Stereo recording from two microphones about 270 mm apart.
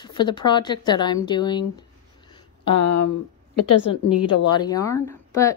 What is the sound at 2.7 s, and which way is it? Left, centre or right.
Speech, left.